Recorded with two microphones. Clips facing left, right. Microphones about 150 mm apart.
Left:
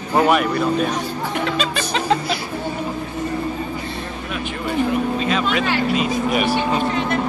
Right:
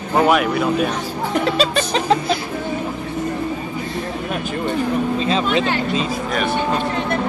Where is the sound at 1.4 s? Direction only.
35° right (ahead or behind).